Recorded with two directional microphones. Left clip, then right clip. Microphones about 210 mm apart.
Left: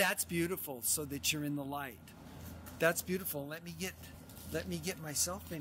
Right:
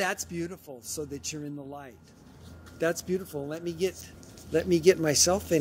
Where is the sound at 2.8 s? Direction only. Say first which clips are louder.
Right 4 dB; 10° right (ahead or behind).